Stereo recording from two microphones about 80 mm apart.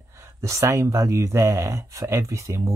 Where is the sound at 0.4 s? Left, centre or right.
Right.